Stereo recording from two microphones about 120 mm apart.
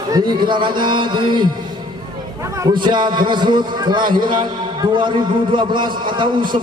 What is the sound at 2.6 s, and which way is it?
A man's voice, 40° right (ahead or behind).